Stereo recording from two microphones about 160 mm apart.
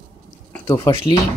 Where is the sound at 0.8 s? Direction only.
25° left (ahead or behind).